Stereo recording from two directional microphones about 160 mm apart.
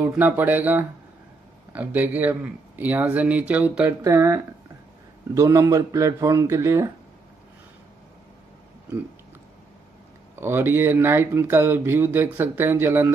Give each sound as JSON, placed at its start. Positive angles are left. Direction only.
{"t": 0.1, "sound": "speech", "side_deg": -10}
{"t": 10.4, "sound": "speech", "side_deg": -15}